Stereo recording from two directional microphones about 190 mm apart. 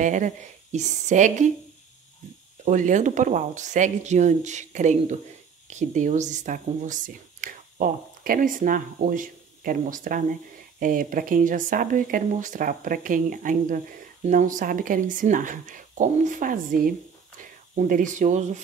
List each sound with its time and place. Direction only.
0.0 s speech: 40° right (ahead or behind)
2.6 s speech: 40° right (ahead or behind)